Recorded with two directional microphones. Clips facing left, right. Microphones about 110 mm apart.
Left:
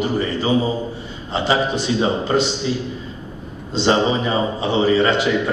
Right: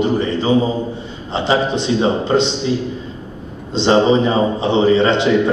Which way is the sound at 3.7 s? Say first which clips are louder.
Right 4 dB; 25° right (ahead or behind).